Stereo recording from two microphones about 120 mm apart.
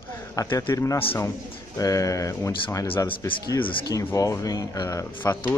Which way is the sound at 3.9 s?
30° left (ahead or behind).